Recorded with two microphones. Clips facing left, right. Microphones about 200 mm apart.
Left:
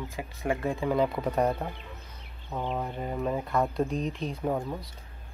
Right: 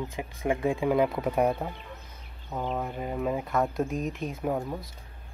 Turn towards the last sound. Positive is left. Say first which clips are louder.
# even
turn(degrees=-5)  # may be behind; listen again after turning